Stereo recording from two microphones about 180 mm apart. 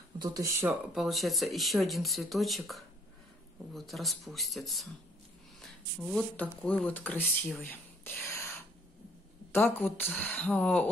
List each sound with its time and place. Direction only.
0.2 s speech: 20° right (ahead or behind)
0.9 s speech: centre (ahead or behind)
9.5 s speech: 10° left (ahead or behind)